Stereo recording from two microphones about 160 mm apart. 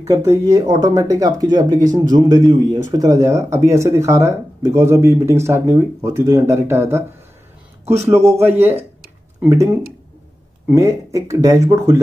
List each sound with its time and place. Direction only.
0.1 s speech: 20° right (ahead or behind)
7.8 s speech: 45° right (ahead or behind)
8.1 s speech: 15° right (ahead or behind)